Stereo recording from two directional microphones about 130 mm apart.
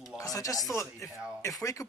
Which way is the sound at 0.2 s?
25° left (ahead or behind).